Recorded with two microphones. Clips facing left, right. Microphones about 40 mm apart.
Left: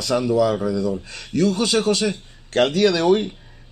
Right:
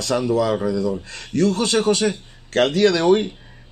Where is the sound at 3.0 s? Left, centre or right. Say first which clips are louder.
Right 1 dB; centre.